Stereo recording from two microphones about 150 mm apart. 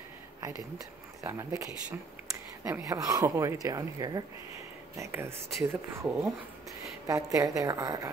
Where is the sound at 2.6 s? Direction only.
20° right (ahead or behind).